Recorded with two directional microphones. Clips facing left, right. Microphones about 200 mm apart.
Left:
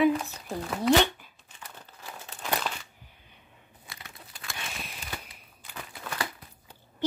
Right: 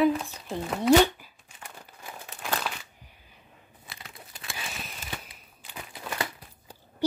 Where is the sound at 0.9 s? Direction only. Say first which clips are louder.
Right 4 dB; 10° right (ahead or behind).